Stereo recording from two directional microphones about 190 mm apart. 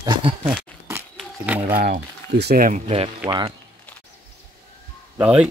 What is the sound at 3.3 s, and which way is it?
Speech, 25° right (ahead or behind).